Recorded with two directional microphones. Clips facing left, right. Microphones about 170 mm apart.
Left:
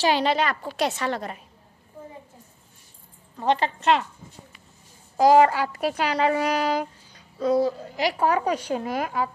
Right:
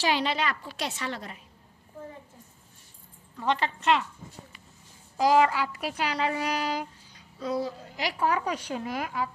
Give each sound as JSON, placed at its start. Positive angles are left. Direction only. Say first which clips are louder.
{"t": 0.0, "sound": "speech", "louder": "left 5 dB", "side_deg": 40}
{"t": 3.3, "sound": "speech", "louder": "left 5 dB", "side_deg": 35}
{"t": 5.1, "sound": "speech", "louder": "left 5 dB", "side_deg": 45}
{"t": 7.9, "sound": "speech", "louder": "left 1 dB", "side_deg": 35}